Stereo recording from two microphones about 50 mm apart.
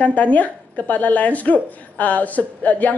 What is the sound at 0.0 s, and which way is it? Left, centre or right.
Speech, left.